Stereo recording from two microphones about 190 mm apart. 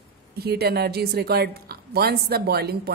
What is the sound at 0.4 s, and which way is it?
A woman's voice, 55° right (ahead or behind).